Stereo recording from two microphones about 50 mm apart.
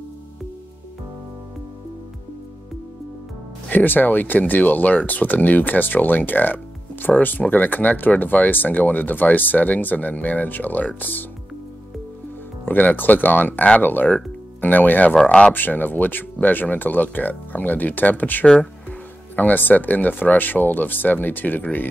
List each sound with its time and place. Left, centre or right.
3.6 s speech: left
12.6 s speech: left